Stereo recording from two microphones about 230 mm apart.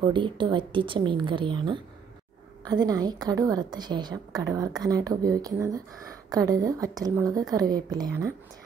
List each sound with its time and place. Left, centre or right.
0.0 s a woman's voice: right